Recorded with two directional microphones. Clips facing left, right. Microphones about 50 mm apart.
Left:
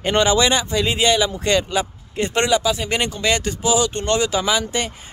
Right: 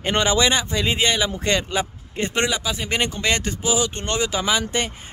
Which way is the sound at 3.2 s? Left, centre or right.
Right.